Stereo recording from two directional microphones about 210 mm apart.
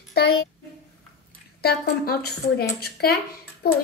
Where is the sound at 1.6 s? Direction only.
45° left (ahead or behind).